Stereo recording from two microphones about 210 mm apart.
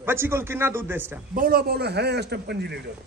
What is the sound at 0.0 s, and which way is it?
A man's voice, 10° right (ahead or behind).